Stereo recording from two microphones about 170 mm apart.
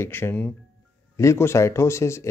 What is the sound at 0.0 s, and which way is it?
Speech, 15° left (ahead or behind).